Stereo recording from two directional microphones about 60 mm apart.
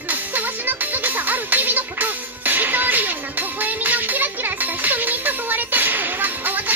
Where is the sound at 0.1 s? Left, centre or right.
Right.